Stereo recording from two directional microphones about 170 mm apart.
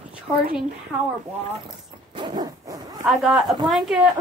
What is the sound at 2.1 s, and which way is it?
Zipper, 25° right (ahead or behind).